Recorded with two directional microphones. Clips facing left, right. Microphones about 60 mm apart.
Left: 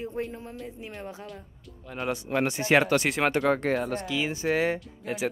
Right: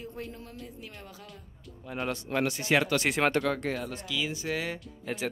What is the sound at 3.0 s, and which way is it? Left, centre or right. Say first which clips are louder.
Speech: left 1 dB; centre.